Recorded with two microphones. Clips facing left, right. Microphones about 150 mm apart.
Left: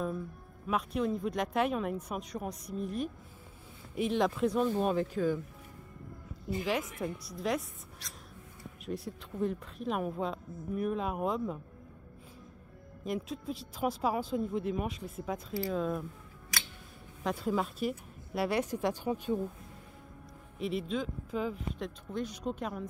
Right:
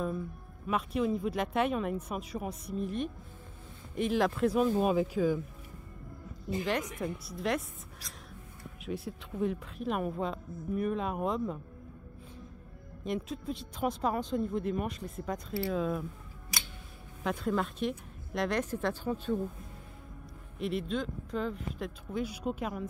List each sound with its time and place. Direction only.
0.7 s speech: centre (ahead or behind)
6.6 s speech: centre (ahead or behind)
8.8 s speech: centre (ahead or behind)
13.0 s speech: centre (ahead or behind)
17.2 s a woman's voice: centre (ahead or behind)
20.5 s speech: centre (ahead or behind)